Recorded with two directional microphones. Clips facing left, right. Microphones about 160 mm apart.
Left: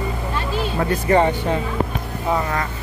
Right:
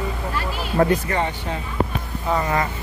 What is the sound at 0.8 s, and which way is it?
Speech, 45° right (ahead or behind).